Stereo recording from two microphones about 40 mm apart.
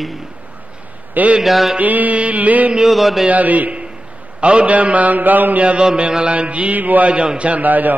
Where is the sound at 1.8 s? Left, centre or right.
Right.